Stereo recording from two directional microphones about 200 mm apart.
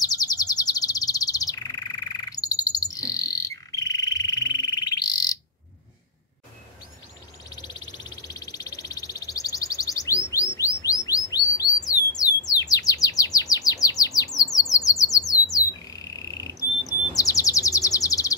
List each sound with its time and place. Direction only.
0.0 s bird: 20° left (ahead or behind)
7.4 s a sound: 20° left (ahead or behind)
10.3 s chirp: 15° left (ahead or behind)